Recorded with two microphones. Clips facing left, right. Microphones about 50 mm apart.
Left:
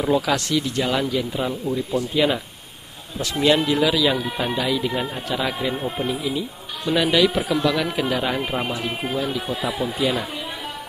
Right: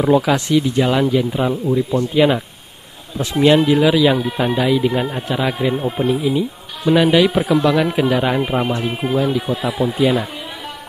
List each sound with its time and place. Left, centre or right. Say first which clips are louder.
0.0 s speech: right 6 dB; centre